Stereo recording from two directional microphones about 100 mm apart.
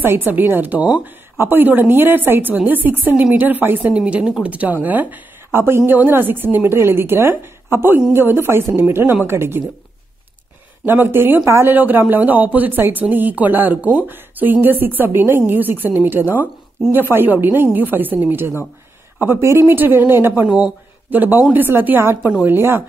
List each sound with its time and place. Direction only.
0.0 s speech: 20° right (ahead or behind)
10.9 s speech: 20° right (ahead or behind)